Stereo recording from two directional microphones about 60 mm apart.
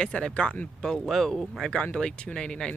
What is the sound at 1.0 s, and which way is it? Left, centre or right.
Speech, centre.